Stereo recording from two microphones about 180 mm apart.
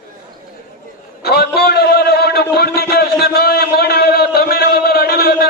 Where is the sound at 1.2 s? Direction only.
60° left (ahead or behind).